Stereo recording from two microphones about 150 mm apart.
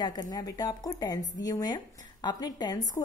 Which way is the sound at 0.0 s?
25° left (ahead or behind).